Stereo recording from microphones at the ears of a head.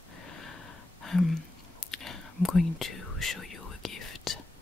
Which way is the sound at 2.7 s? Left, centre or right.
Left.